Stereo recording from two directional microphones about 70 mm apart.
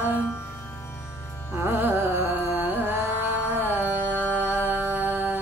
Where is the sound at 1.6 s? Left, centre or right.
Right.